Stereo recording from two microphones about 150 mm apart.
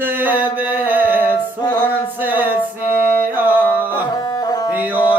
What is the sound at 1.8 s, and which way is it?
Music, 10° right (ahead or behind).